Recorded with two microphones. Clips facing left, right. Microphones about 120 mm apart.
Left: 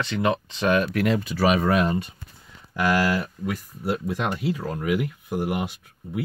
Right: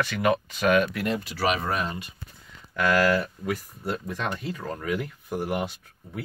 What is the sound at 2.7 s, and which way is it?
Speech, 20° left (ahead or behind).